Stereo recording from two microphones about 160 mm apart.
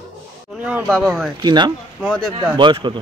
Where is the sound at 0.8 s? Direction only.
5° left (ahead or behind).